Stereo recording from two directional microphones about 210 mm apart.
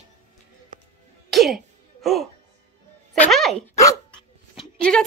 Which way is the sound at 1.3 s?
Centre (ahead or behind).